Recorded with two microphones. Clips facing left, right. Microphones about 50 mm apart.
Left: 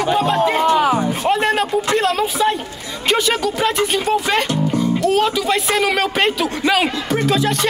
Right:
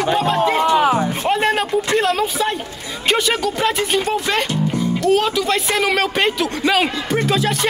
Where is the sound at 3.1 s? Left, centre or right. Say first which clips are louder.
Left 1 dB; centre.